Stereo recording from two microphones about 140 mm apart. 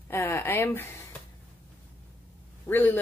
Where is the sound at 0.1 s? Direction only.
20° left (ahead or behind).